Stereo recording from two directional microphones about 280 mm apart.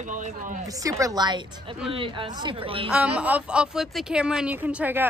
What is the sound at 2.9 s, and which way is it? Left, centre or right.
A woman's voice, centre.